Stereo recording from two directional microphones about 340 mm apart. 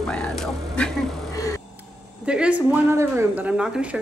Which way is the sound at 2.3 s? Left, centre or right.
Centre.